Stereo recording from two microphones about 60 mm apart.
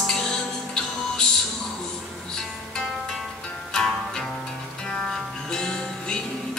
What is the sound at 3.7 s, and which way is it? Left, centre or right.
Music, centre.